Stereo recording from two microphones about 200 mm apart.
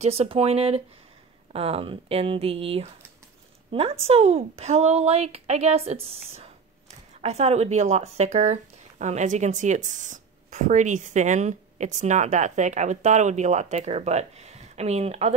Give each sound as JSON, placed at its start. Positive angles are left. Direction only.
{"t": 0.0, "sound": "speech", "side_deg": -30}
{"t": 4.0, "sound": "speech", "side_deg": -30}